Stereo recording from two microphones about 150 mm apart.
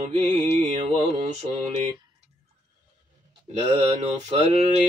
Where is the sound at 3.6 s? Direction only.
35° right (ahead or behind).